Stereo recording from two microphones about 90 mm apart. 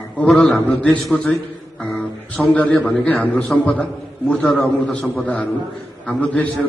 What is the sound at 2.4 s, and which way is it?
A man's voice, 15° left (ahead or behind).